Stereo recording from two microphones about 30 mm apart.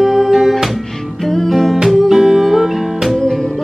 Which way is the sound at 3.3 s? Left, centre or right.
Centre.